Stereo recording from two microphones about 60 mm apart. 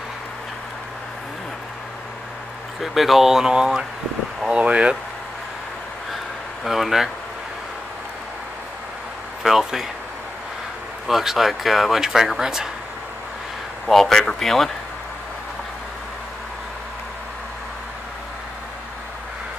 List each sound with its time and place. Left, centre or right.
2.8 s speech: centre
6.6 s speech: centre
9.4 s speech: centre
11.1 s speech: centre
13.8 s speech: centre